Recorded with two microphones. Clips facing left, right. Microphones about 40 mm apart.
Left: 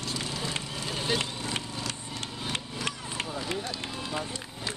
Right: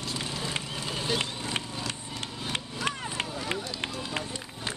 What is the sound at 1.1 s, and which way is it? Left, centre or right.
Vehicle, centre.